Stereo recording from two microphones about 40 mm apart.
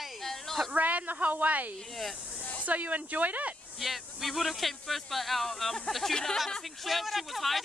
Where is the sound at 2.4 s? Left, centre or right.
Left.